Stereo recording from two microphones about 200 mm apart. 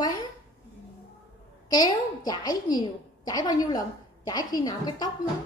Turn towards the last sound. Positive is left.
turn(degrees=20)  # may be behind; listen again after turning